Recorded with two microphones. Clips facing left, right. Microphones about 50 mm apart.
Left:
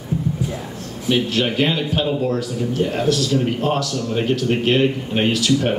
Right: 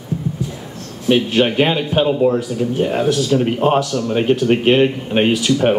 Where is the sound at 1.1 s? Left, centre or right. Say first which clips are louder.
Right 5 dB; right.